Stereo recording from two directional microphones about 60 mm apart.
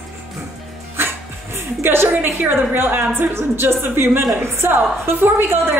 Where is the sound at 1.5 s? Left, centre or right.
Right.